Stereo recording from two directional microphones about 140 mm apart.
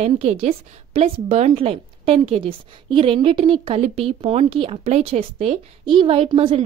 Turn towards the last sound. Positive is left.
turn(degrees=-40)  # may be behind; listen again after turning